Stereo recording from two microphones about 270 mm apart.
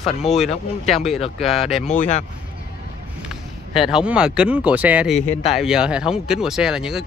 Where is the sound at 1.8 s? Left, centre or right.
Left.